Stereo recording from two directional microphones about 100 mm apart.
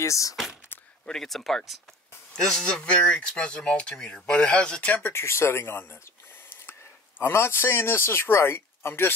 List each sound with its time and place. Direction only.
0.0 s speech: 35° left (ahead or behind)
1.0 s speech: 5° left (ahead or behind); by 9.1 s 25° left (ahead or behind)